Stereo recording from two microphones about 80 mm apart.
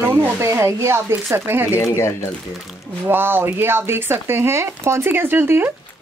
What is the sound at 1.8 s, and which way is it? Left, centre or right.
Speech, left.